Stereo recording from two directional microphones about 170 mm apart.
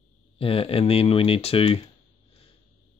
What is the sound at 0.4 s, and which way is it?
Speech, 35° left (ahead or behind).